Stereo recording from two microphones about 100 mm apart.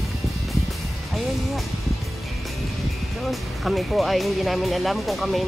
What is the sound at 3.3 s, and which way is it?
Speech, centre (ahead or behind).